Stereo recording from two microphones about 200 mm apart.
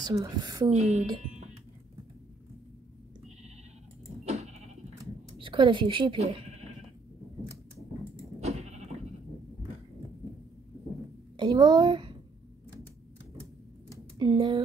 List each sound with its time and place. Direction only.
0.0 s a woman's voice: 20° right (ahead or behind)
0.7 s speech: 35° right (ahead or behind)
4.2 s goat: 35° right (ahead or behind)
5.4 s a woman's voice: 25° right (ahead or behind)
8.4 s sheep: 35° right (ahead or behind)
11.3 s a child's voice: 20° right (ahead or behind)
14.1 s speech: 20° right (ahead or behind)